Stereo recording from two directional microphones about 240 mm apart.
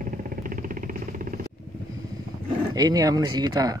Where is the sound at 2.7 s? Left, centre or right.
Centre.